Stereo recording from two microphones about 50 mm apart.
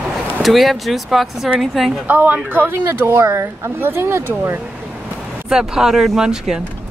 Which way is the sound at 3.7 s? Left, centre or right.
Right.